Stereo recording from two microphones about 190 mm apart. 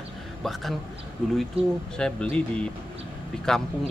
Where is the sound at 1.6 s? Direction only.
30° right (ahead or behind).